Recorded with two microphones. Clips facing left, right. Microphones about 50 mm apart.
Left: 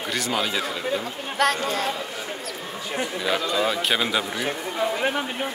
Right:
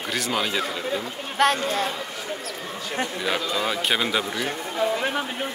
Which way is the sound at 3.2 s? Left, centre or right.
Centre.